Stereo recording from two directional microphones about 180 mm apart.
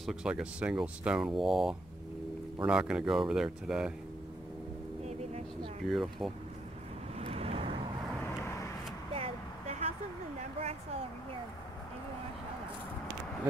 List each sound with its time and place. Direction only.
0.0 s speech: 5° right (ahead or behind)
5.9 s speech: centre (ahead or behind)
7.2 s vehicle: 35° right (ahead or behind)
9.1 s vehicle: 35° right (ahead or behind)
10.6 s a sound: 35° right (ahead or behind)